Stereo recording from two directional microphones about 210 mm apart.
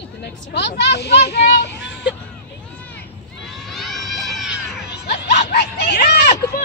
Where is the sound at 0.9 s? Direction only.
55° left (ahead or behind).